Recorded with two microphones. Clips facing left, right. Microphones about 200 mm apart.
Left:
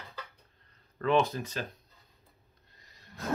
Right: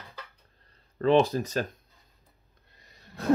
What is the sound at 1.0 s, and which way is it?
Speech, 35° right (ahead or behind).